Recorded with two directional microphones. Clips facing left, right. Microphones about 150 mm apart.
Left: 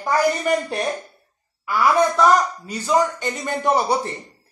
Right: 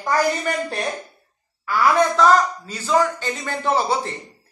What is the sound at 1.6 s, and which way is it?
Speech, 10° left (ahead or behind).